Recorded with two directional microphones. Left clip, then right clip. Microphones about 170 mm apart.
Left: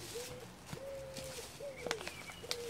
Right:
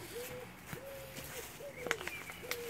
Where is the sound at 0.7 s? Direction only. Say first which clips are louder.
Left 6 dB; 55° left (ahead or behind).